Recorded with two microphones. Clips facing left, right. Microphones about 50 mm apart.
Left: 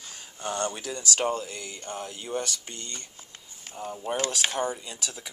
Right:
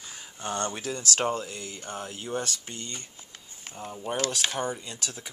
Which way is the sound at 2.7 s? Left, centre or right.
Centre.